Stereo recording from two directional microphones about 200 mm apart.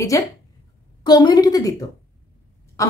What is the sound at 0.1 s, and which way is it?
A woman's voice, 15° left (ahead or behind).